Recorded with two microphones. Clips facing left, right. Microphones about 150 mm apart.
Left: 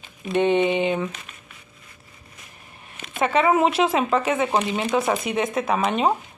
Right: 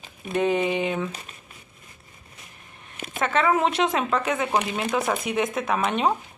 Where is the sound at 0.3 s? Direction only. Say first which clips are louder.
Left 3 dB; centre (ahead or behind).